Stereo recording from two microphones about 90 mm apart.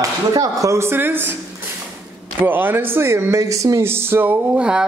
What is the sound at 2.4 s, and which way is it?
Speech, 20° right (ahead or behind).